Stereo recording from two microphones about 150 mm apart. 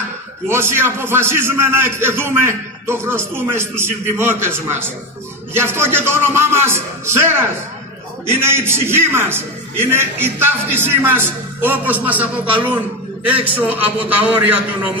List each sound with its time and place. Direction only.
0.5 s a man's voice: 15° right (ahead or behind)
5.5 s a man's voice: 15° right (ahead or behind)